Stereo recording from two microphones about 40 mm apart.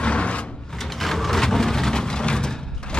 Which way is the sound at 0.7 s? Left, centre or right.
Centre.